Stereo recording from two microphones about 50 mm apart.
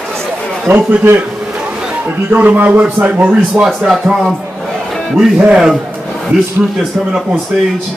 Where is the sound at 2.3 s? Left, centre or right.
Right.